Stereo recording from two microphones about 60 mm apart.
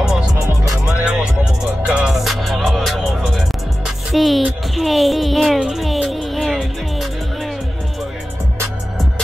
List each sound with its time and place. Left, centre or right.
0.8 s music: centre